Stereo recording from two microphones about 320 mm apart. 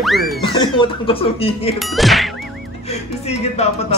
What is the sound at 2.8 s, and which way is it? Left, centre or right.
Speech, centre.